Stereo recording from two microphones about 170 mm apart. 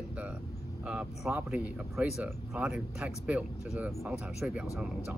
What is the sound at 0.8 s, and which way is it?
Speech, 5° right (ahead or behind).